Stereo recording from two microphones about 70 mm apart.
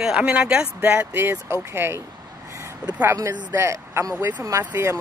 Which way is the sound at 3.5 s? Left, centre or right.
Right.